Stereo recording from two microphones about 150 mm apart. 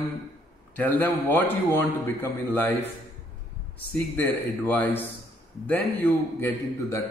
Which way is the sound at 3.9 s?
10° left (ahead or behind).